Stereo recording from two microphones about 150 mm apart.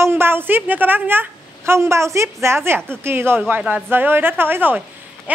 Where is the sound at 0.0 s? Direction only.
15° right (ahead or behind).